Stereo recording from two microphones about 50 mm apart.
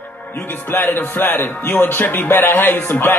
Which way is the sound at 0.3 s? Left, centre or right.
Left.